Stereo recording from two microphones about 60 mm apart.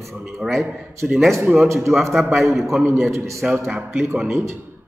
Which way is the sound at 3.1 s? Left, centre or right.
Right.